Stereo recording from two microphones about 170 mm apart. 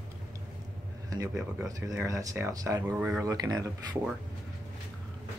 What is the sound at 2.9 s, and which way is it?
Speech, 5° right (ahead or behind).